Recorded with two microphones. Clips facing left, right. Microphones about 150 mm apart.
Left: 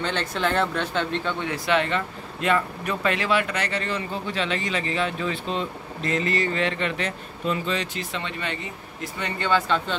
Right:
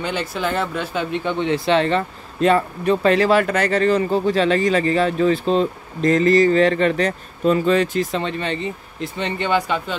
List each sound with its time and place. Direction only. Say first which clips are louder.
0.0 s speech: right 2 dB; 10° right (ahead or behind)
1.4 s speech: right 7 dB; 30° right (ahead or behind)
9.0 s speech: right 5 dB; 20° right (ahead or behind)